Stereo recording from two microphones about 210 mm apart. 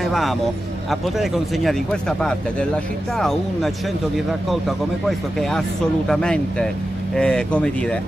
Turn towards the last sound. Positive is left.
turn(degrees=5)  # may be behind; listen again after turning